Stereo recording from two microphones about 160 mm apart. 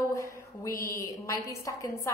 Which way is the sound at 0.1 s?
20° left (ahead or behind).